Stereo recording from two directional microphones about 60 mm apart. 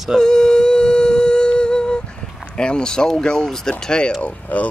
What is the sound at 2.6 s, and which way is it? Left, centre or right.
Speech, centre.